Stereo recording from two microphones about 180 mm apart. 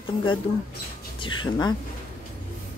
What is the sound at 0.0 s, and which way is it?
Speech, 25° left (ahead or behind).